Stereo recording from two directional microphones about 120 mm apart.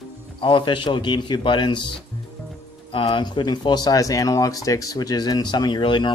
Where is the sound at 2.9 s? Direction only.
45° left (ahead or behind).